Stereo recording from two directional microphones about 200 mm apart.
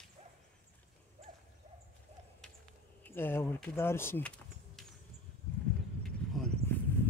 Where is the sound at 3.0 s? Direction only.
10° left (ahead or behind).